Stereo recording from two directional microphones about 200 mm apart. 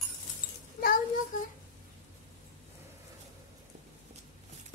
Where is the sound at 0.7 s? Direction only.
45° left (ahead or behind).